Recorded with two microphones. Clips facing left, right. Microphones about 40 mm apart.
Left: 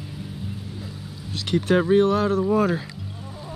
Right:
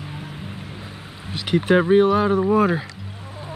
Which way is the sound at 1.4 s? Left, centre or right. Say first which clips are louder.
Right 3 dB; centre.